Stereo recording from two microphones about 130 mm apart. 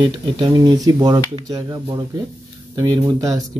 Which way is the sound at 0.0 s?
30° right (ahead or behind).